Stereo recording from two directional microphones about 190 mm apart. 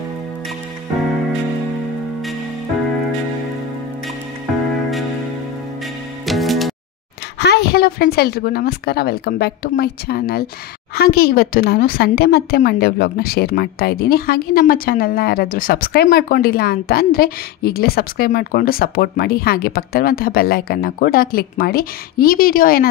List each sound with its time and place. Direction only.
6.2 s music: centre (ahead or behind)
7.3 s a woman's voice: 60° left (ahead or behind)